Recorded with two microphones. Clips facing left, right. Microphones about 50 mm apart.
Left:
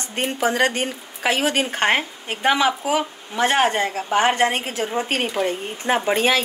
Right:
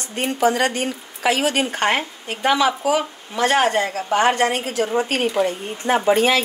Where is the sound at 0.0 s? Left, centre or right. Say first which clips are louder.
Right 3 dB; left.